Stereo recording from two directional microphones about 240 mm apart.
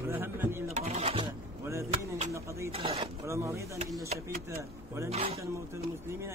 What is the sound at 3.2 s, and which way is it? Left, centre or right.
Speech, centre.